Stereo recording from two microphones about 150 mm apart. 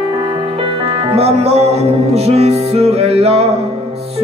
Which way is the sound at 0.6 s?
35° right (ahead or behind).